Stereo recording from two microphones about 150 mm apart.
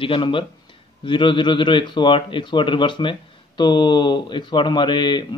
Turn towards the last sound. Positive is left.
turn(degrees=30)  # may be behind; listen again after turning